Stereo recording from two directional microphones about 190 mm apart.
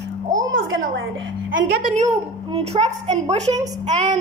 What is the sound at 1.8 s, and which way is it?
A woman's voice, 40° right (ahead or behind).